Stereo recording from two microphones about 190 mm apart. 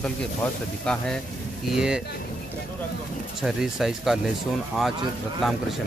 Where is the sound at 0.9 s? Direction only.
5° left (ahead or behind).